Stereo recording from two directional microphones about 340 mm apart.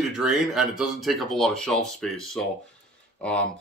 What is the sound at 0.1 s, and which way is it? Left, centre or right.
Speech, centre.